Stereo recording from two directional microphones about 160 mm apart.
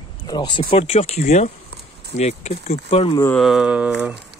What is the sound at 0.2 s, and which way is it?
Speech, 25° left (ahead or behind).